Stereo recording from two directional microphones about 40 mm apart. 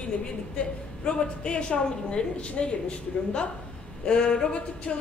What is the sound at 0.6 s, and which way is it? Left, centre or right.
A woman's voice, left.